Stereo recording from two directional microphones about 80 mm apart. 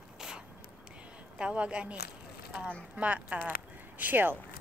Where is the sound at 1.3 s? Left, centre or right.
Centre.